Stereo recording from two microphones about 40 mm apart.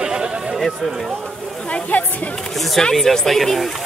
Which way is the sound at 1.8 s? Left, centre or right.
Left.